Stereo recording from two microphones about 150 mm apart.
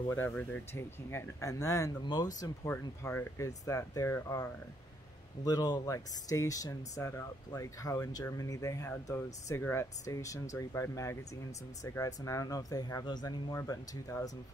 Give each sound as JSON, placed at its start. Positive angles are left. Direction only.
{"t": 0.1, "sound": "speech", "side_deg": 15}